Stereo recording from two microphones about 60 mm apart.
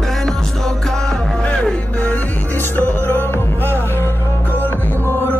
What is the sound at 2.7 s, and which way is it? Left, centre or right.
Music, left.